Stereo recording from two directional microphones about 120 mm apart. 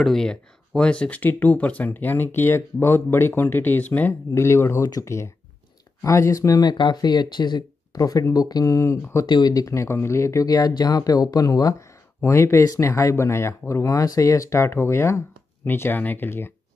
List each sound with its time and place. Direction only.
0.0 s speech: 5° left (ahead or behind)